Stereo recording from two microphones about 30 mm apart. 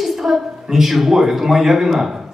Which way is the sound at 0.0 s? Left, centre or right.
Centre.